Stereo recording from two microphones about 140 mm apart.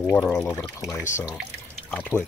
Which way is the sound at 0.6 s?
25° left (ahead or behind).